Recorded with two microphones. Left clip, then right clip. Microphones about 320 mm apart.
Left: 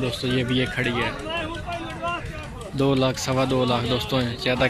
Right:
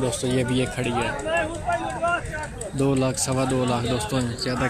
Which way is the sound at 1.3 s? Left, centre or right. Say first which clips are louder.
Right 5 dB; right.